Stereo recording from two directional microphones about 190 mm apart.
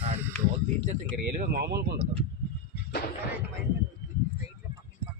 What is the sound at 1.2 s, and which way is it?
Speech, 50° right (ahead or behind).